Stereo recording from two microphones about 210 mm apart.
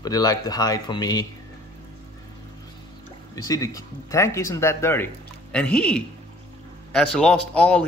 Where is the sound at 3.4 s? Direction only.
15° left (ahead or behind).